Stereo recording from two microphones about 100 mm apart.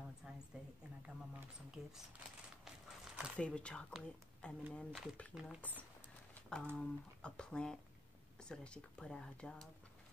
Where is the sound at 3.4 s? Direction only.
10° left (ahead or behind).